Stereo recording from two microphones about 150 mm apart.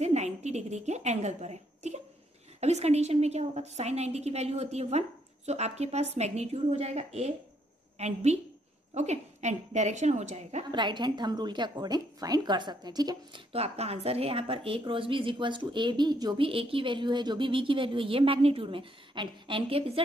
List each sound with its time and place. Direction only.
0.0 s a woman's voice: 50° right (ahead or behind)
10.7 s speech: 30° right (ahead or behind)
13.5 s a woman's voice: 45° right (ahead or behind)